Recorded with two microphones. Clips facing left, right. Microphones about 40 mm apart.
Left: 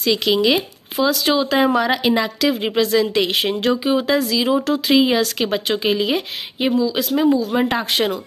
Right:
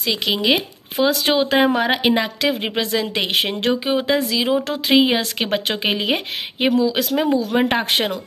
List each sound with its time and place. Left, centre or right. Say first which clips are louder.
0.0 s speech: left 3 dB; centre
1.0 s speech: even; right
5.7 s speech: left 2 dB; right